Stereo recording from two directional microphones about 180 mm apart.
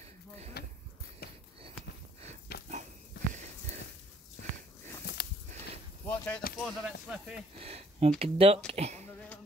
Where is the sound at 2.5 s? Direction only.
60° left (ahead or behind).